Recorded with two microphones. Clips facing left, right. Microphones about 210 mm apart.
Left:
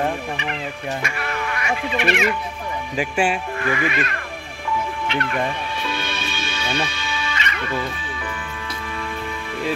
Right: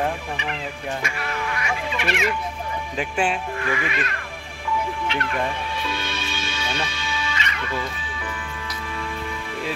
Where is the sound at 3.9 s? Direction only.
60° left (ahead or behind).